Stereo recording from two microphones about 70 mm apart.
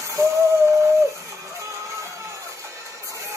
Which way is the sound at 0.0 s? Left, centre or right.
Right.